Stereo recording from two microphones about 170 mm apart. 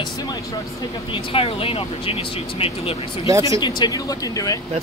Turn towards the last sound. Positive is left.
turn(degrees=20)  # may be behind; listen again after turning